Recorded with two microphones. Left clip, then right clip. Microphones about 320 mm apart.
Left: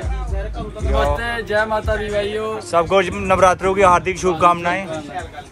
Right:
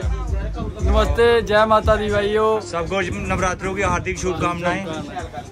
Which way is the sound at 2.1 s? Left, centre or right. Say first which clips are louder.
Right 4 dB; centre.